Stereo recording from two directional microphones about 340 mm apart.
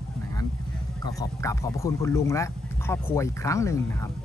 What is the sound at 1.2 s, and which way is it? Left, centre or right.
Speech, centre.